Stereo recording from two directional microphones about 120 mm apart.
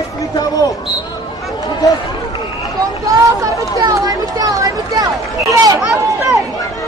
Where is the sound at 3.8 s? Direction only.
30° right (ahead or behind).